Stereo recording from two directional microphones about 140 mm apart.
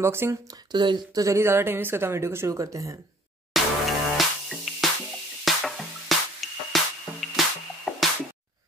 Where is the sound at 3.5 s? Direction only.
Centre (ahead or behind).